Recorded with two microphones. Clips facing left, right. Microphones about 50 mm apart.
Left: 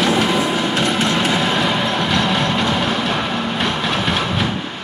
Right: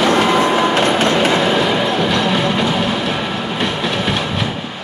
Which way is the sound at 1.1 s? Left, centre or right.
Centre.